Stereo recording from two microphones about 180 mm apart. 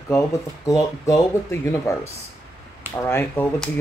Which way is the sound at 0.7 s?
20° left (ahead or behind).